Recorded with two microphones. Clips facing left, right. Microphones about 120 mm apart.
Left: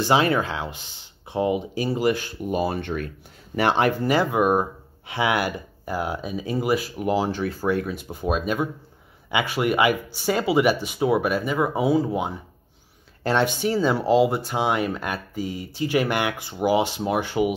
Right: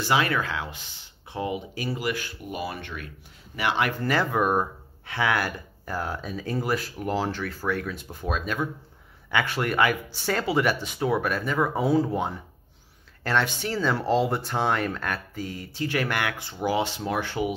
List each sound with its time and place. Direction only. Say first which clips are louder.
0.0 s speech: left 4 dB; 25° left (ahead or behind)
4.0 s speech: left 4 dB; 15° left (ahead or behind)
13.2 s speech: left 4 dB; 20° left (ahead or behind)